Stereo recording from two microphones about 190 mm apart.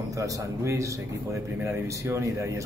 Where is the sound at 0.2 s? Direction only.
15° right (ahead or behind).